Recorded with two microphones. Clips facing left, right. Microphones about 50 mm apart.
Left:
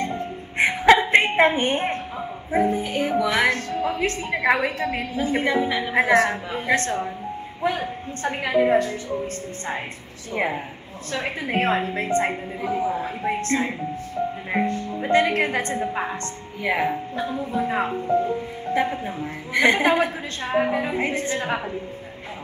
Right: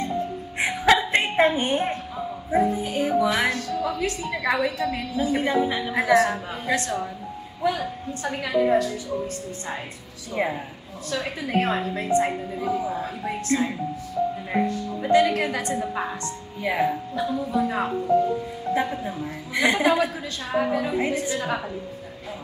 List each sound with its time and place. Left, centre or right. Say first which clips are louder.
0.0 s music: right 1 dB; left
0.8 s a sound: left 4 dB; left
2.5 s a woman's voice: left 1 dB; left
10.3 s a woman's voice: left 1 dB; left